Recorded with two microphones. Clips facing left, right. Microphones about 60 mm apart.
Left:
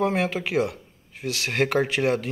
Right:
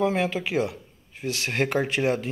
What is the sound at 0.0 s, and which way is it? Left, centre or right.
Speech, left.